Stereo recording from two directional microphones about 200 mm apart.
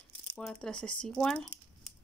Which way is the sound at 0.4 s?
5° left (ahead or behind).